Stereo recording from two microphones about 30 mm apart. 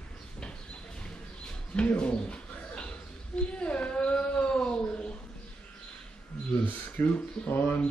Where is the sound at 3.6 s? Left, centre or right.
Left.